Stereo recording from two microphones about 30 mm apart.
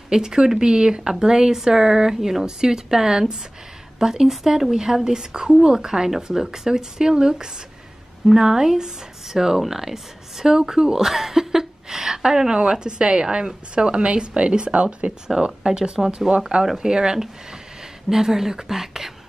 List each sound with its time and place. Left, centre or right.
0.1 s a woman's voice: right
15.4 s speech: right
18.1 s a woman's voice: centre